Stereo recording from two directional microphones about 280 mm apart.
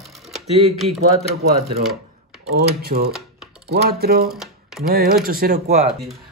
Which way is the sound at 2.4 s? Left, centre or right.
Right.